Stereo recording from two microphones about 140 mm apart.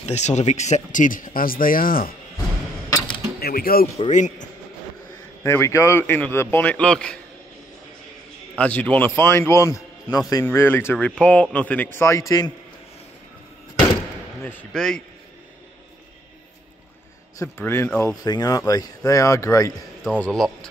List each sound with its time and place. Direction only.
0.0 s speech: 55° left (ahead or behind); by 2.1 s 90° left
3.3 s speech: 90° left
4.1 s speech: 60° left (ahead or behind)
5.4 s speech: 20° left (ahead or behind)
8.5 s speech: 10° left (ahead or behind); by 12.5 s 25° left (ahead or behind)
14.4 s speech: 10° left (ahead or behind)
17.4 s speech: 15° left (ahead or behind)
18.1 s speech: 25° left (ahead or behind)
20.2 s a man's voice: 5° left (ahead or behind)